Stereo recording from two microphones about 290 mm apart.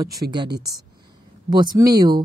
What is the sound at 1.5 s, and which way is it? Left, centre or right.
Speech, centre.